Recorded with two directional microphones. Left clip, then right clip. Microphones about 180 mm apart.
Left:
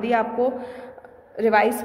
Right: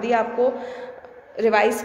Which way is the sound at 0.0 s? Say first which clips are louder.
Right 1 dB; 15° left (ahead or behind).